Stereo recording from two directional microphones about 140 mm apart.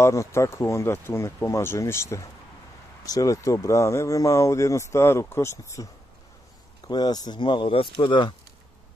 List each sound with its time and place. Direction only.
0.0 s speech: 20° left (ahead or behind)
6.9 s speech: 30° left (ahead or behind)